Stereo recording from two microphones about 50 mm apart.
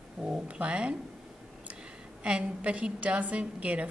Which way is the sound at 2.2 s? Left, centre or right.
Right.